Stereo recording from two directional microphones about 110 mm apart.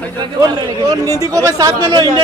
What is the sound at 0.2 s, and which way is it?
Speech, 40° right (ahead or behind).